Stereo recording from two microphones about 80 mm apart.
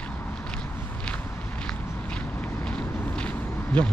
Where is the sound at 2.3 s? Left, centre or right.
Centre.